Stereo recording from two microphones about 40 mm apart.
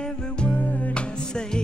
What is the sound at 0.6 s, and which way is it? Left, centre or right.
Music, left.